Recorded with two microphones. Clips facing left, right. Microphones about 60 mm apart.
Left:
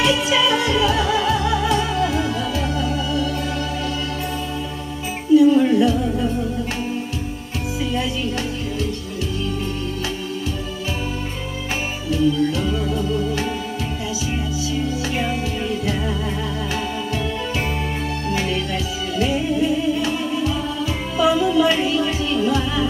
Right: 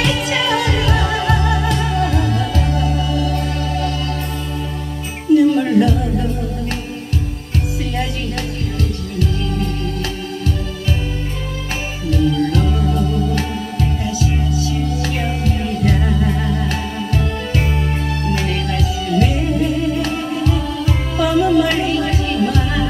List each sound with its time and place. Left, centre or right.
0.0 s music: right
5.3 s music: right
12.5 s music: right
15.4 s music: right
18.3 s music: right